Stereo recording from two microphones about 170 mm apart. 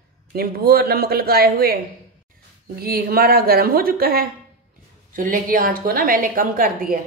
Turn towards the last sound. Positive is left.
turn(degrees=-55)  # may be behind; listen again after turning